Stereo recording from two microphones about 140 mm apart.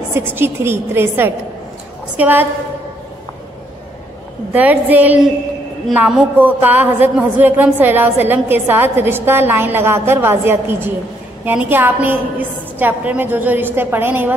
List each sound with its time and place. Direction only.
0.1 s a woman's voice: 15° right (ahead or behind)
4.5 s a woman's voice: 10° right (ahead or behind)